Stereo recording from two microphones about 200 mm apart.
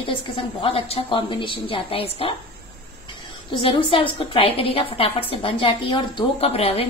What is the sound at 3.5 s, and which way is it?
A woman's voice, 25° left (ahead or behind).